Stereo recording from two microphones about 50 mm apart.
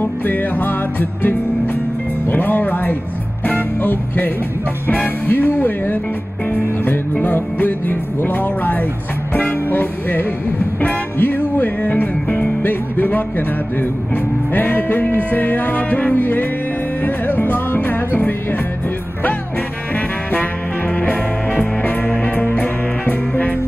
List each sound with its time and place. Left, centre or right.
0.0 s music: left
14.5 s music: left
21.0 s music: left